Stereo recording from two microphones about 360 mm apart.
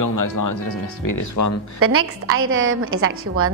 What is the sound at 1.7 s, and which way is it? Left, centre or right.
A woman's voice, right.